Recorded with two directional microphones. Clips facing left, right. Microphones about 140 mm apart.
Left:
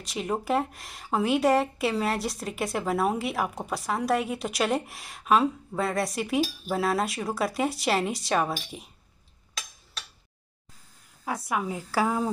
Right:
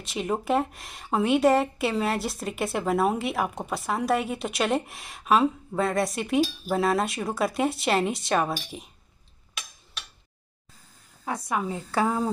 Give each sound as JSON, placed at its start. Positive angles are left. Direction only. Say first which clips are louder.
{"t": 0.0, "sound": "a woman's voice", "louder": "right 2 dB", "side_deg": 0}
{"t": 11.2, "sound": "a woman's voice", "louder": "right 1 dB", "side_deg": 5}